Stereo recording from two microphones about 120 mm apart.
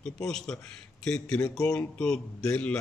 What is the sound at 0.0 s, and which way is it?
A man's voice, 5° left (ahead or behind).